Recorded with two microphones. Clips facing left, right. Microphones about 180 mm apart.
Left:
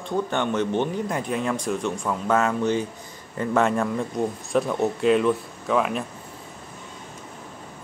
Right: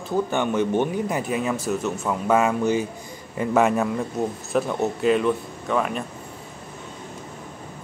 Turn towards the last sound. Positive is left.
turn(degrees=0)  # may be behind; listen again after turning